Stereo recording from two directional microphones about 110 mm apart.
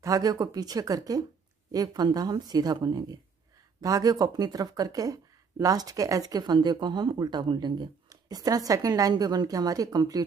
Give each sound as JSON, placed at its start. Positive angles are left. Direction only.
{"t": 0.0, "sound": "speech", "side_deg": -35}